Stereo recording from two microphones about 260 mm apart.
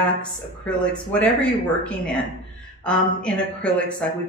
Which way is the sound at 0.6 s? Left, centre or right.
Centre.